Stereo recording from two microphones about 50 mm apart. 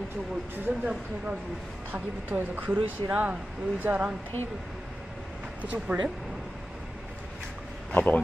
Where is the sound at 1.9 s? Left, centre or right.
Right.